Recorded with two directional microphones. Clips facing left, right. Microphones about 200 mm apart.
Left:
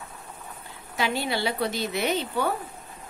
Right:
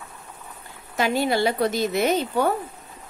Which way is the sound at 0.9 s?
45° right (ahead or behind).